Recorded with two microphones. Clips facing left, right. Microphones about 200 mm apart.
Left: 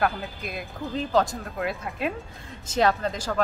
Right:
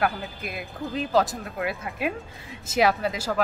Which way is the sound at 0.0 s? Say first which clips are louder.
Even; 5° right (ahead or behind).